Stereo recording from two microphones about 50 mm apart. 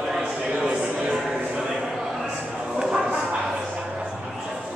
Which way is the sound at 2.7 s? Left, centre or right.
Centre.